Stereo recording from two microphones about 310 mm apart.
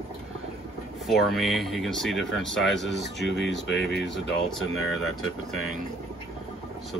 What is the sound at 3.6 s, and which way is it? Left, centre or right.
Speech, left.